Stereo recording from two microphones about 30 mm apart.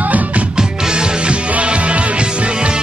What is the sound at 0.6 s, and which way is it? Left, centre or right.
Music, right.